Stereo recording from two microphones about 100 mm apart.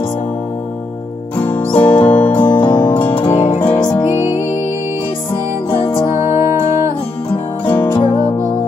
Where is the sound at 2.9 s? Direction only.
20° left (ahead or behind).